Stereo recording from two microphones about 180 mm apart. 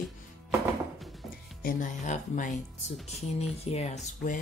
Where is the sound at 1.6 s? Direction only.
45° left (ahead or behind).